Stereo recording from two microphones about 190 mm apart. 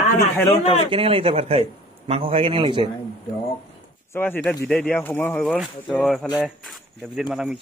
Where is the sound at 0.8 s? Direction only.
30° right (ahead or behind).